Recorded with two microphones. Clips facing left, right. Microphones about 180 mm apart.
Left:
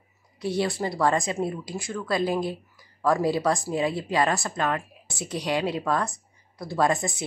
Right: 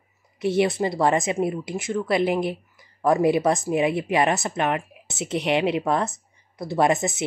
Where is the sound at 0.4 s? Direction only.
20° right (ahead or behind).